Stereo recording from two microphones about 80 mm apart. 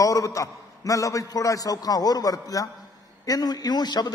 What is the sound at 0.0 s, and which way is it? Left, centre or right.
A man's voice, left.